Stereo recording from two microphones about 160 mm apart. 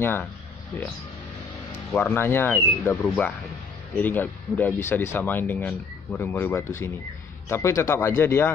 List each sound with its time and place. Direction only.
0.0 s speech: 15° left (ahead or behind)
1.9 s speech: 10° left (ahead or behind)